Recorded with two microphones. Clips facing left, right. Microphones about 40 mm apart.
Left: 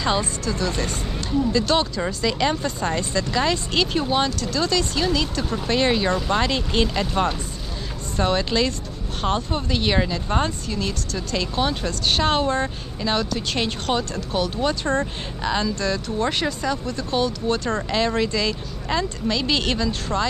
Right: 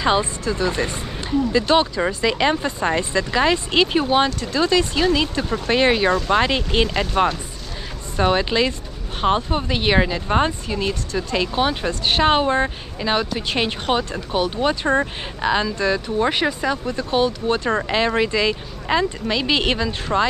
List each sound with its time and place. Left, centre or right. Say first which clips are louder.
0.0 s speech: right 4 dB; centre